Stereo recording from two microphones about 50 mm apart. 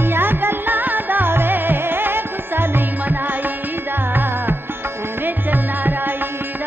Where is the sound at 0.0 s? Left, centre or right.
Right.